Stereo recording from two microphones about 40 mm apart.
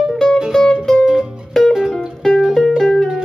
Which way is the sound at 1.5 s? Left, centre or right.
Centre.